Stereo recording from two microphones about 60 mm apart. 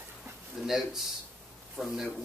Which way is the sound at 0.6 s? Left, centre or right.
Centre.